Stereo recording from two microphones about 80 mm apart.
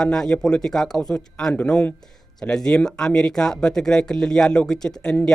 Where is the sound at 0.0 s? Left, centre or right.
Centre.